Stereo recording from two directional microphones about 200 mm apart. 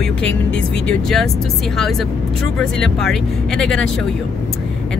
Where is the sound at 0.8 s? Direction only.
Centre (ahead or behind).